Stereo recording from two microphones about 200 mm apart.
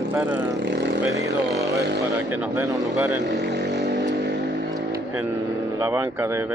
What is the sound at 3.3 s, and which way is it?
Vehicle, 60° right (ahead or behind).